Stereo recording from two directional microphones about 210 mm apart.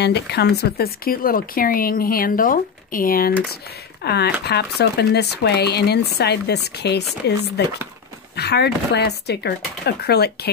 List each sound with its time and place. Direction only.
0.0 s speech: 50° left (ahead or behind)